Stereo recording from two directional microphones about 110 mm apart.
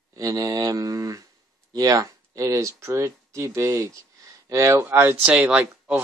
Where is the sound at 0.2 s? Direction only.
30° right (ahead or behind).